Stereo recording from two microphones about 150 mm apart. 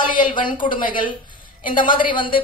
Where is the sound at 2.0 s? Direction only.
35° left (ahead or behind).